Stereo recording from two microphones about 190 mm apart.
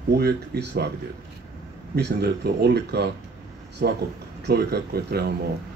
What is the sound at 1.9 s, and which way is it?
Speech, 60° right (ahead or behind).